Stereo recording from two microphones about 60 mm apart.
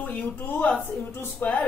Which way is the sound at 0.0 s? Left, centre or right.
Left.